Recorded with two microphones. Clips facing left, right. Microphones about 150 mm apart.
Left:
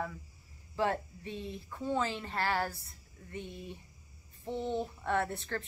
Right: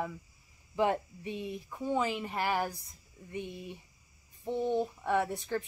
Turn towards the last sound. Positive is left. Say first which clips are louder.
# right 3 dB
turn(degrees=-10)  # may be behind; listen again after turning